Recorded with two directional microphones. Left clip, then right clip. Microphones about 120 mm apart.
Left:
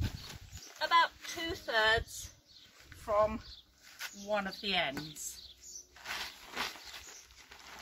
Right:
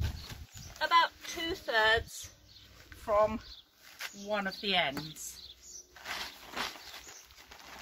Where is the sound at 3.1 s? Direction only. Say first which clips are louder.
Right 2 dB; 20° right (ahead or behind).